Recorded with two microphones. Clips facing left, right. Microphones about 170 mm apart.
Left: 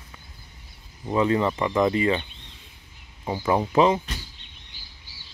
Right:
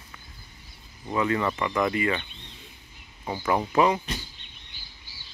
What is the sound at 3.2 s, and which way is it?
Speech, 15° left (ahead or behind).